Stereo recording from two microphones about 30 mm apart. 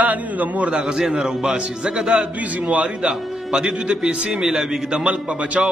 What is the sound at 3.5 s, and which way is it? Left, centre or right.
Speech, right.